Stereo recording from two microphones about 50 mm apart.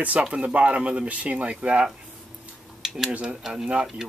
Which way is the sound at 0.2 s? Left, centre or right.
Right.